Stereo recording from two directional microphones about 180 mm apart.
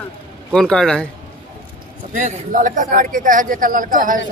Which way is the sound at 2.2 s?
45° right (ahead or behind).